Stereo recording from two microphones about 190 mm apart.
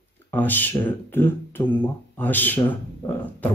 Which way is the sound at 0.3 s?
10° left (ahead or behind).